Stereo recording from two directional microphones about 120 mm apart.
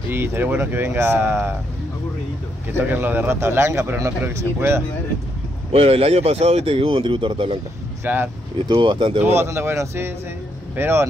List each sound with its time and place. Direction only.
0.1 s a man's voice: 20° right (ahead or behind)
2.9 s a man's voice: 15° right (ahead or behind)
5.7 s speech: 60° right (ahead or behind)
8.0 s a man's voice: 20° right (ahead or behind)
8.6 s speech: 40° right (ahead or behind)
9.2 s a man's voice: 20° right (ahead or behind)